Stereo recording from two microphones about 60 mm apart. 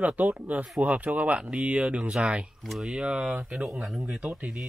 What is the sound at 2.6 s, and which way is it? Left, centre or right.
Speech, centre.